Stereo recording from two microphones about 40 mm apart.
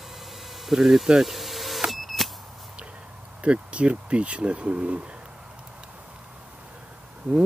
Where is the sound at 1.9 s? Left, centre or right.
Centre.